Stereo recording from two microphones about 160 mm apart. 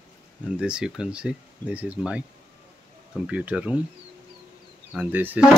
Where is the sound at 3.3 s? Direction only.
10° right (ahead or behind).